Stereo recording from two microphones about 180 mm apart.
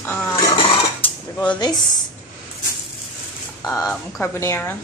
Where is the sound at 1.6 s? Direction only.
25° left (ahead or behind).